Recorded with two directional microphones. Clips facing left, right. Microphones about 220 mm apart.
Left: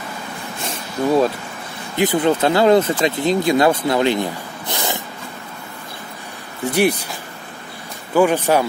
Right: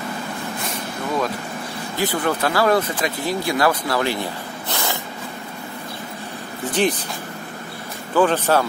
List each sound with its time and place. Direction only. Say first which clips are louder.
0.7 s vehicle: left 10 dB; 30° left (ahead or behind)
2.0 s speech: left 6 dB; 20° left (ahead or behind)
6.7 s speech: left 3 dB; 10° left (ahead or behind)
8.1 s speech: left 2 dB; 10° left (ahead or behind)